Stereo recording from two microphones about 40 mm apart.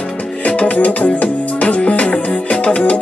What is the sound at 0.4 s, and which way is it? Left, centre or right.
Music, left.